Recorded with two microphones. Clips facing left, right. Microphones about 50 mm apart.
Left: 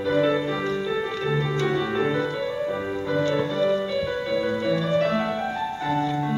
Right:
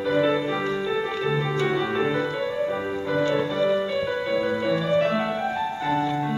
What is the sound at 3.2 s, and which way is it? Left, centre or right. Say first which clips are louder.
Music: even; centre.